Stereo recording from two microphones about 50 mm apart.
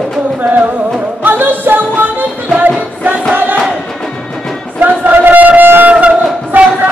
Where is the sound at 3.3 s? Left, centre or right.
Right.